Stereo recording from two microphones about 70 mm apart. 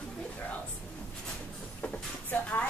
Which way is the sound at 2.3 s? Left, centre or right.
Left.